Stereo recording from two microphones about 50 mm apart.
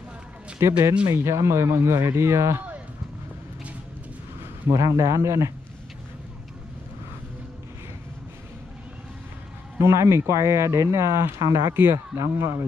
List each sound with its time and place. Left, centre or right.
0.6 s speech: right
1.1 s speech: right
4.6 s speech: right
9.8 s speech: right
11.7 s speech: right
12.2 s speech: right